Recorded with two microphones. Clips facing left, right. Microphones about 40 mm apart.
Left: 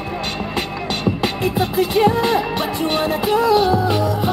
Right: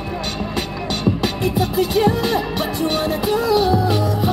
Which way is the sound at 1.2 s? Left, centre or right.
Left.